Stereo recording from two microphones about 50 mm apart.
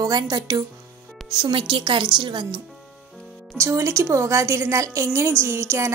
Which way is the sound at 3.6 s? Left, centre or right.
Right.